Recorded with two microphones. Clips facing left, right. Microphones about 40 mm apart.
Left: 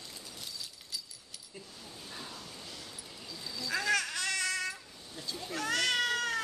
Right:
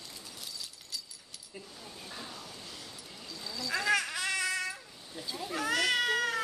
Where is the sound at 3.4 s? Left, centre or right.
Centre.